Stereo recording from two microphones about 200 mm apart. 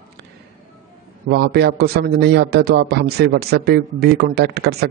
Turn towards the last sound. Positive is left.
turn(degrees=-55)  # may be behind; listen again after turning